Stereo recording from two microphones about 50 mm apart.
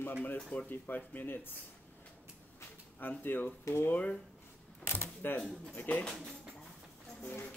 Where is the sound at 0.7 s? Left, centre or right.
Left.